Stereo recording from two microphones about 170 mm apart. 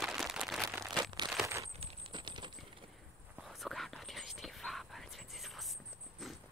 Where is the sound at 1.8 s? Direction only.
35° right (ahead or behind).